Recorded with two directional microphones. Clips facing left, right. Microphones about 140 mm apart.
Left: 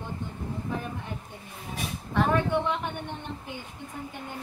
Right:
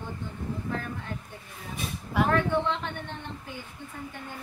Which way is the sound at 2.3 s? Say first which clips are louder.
Even; 15° left (ahead or behind).